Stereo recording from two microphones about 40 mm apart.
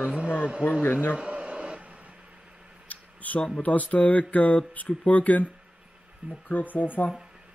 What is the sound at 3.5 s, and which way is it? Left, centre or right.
Speech, left.